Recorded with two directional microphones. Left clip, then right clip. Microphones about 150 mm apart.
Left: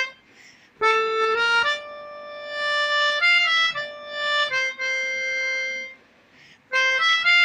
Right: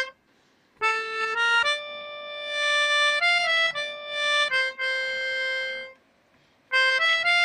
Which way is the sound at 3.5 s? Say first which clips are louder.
Left 2 dB; 30° right (ahead or behind).